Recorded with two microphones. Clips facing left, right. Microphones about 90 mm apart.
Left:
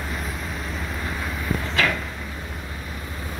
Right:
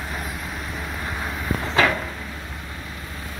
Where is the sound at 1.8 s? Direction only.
30° right (ahead or behind).